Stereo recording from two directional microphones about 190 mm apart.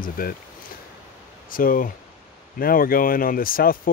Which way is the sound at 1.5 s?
45° left (ahead or behind).